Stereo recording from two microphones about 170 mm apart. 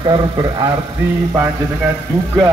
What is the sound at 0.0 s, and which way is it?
Speech, 25° right (ahead or behind).